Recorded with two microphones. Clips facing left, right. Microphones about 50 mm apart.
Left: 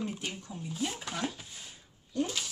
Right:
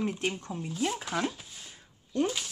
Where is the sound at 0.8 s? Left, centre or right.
Centre.